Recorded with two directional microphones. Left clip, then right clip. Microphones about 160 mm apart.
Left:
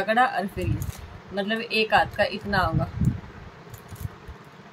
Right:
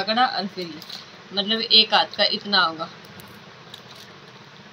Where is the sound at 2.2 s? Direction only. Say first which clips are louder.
Right 5 dB; 5° left (ahead or behind).